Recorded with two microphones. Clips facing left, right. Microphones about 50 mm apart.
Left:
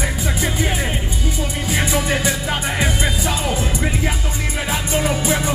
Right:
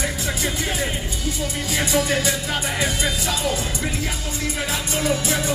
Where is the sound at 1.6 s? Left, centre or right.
Left.